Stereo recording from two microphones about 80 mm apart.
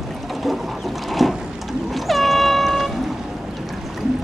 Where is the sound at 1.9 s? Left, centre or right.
Centre.